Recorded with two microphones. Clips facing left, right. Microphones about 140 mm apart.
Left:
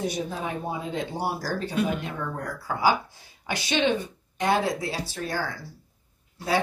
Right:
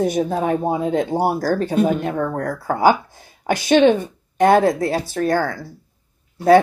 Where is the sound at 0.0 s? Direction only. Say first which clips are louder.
Right 10 dB; 50° right (ahead or behind).